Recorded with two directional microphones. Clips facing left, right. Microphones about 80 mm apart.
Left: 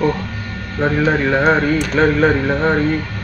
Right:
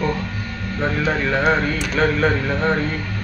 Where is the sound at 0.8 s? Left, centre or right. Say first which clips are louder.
Left 5 dB; centre.